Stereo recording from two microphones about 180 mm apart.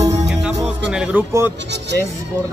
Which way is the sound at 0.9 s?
5° right (ahead or behind).